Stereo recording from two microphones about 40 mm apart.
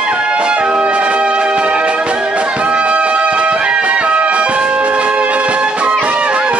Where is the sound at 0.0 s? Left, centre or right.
Right.